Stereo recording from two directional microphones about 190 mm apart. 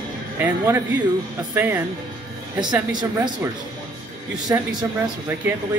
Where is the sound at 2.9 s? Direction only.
20° right (ahead or behind).